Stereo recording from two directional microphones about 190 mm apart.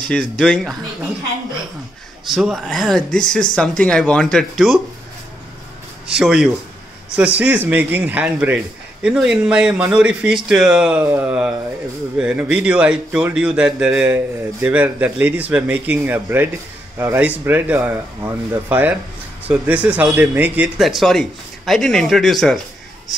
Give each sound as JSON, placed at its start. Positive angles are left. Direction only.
{"t": 0.0, "sound": "speech", "side_deg": 5}
{"t": 2.2, "sound": "speech", "side_deg": 0}
{"t": 6.0, "sound": "speech", "side_deg": -5}